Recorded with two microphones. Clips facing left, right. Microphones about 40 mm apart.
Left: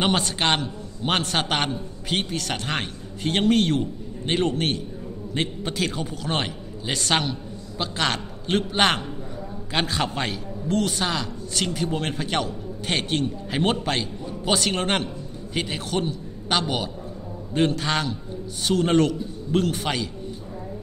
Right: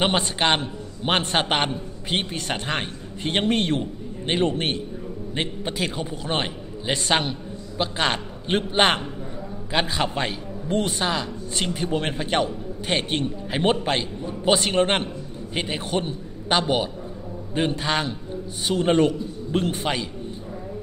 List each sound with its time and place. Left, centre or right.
0.0 s a man's voice: centre
9.7 s a man's voice: centre